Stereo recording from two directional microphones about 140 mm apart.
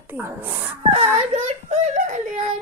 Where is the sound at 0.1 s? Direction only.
15° right (ahead or behind).